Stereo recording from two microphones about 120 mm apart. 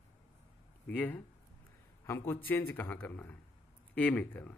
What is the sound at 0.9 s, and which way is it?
A man's voice, 15° left (ahead or behind).